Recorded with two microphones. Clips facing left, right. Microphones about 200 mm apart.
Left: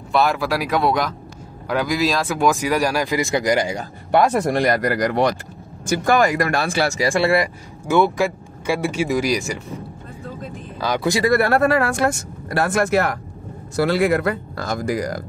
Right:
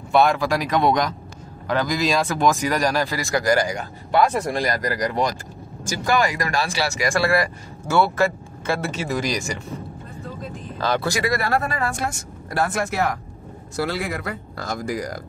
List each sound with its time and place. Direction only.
0.1 s speech: 5° left (ahead or behind); by 3.7 s 20° left (ahead or behind)
4.1 s speech: 55° left (ahead or behind)
5.9 s speech: 55° left (ahead or behind)
7.0 s speech: 30° left (ahead or behind)
7.9 s speech: 15° left (ahead or behind)
10.8 s speech: 15° left (ahead or behind)
11.4 s speech: 70° left (ahead or behind)